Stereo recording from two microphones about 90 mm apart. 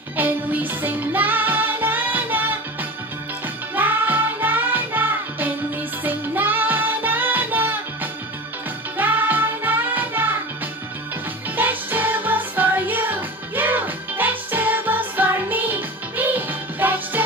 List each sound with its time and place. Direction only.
0.1 s music: 20° right (ahead or behind)
11.5 s music: 20° right (ahead or behind)